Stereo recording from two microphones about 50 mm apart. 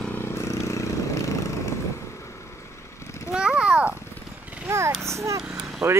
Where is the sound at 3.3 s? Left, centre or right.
Centre.